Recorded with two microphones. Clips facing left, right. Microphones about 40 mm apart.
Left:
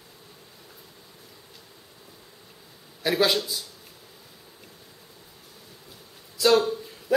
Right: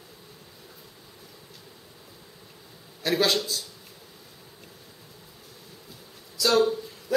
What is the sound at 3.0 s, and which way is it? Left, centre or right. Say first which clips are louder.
Speech: left 1 dB; centre.